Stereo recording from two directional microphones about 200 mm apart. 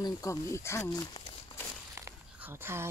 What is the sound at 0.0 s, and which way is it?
Speech, 15° left (ahead or behind).